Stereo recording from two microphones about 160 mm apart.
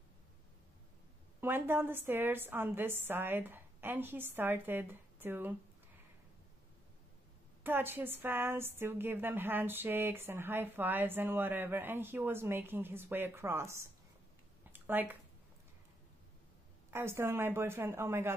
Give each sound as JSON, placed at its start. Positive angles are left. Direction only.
{"t": 1.4, "sound": "a woman's voice", "side_deg": -15}
{"t": 7.6, "sound": "a woman's voice", "side_deg": -15}
{"t": 14.7, "sound": "a sound", "side_deg": -10}
{"t": 16.9, "sound": "a woman's voice", "side_deg": -15}